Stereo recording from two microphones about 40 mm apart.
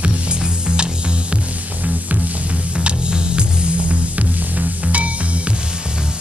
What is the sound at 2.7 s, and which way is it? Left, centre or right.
Music, right.